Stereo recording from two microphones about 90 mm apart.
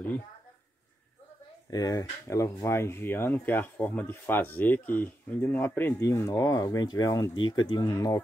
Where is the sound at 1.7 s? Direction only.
40° left (ahead or behind); by 7.8 s 55° left (ahead or behind).